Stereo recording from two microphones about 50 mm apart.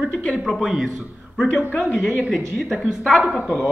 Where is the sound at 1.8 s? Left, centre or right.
Centre.